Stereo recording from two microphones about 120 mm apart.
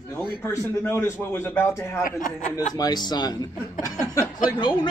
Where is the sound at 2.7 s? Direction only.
35° left (ahead or behind).